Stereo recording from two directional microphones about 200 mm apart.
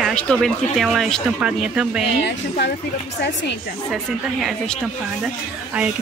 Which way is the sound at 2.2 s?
60° left (ahead or behind).